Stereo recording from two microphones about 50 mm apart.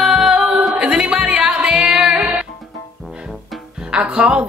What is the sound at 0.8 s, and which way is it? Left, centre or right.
A capella, right.